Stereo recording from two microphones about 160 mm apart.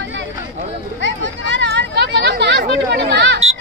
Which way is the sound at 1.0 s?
90° right.